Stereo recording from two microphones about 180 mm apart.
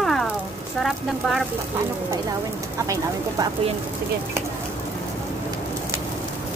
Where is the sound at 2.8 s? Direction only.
20° right (ahead or behind).